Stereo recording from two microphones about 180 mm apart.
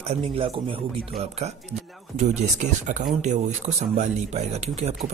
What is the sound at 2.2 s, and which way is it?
Speech, 40° right (ahead or behind).